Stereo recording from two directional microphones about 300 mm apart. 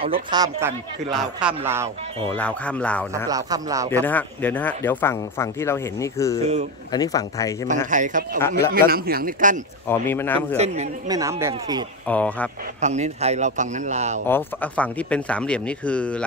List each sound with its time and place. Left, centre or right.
0.0 s speech: centre
3.3 s speech: centre
3.9 s speech: centre
7.9 s a man's voice: right
8.4 s speech: centre
8.7 s a man's voice: right
9.8 s speech: centre
10.6 s a man's voice: right
11.1 s speech: centre
12.1 s speech: centre
12.8 s a man's voice: right
14.2 s speech: centre